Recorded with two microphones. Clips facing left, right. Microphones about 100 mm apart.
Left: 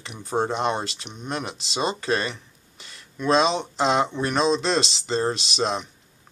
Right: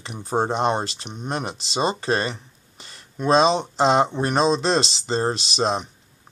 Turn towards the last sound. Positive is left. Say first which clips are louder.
# right 3 dB
turn(degrees=-40)  # may be behind; listen again after turning